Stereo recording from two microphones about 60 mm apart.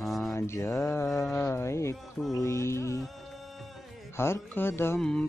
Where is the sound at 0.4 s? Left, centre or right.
Left.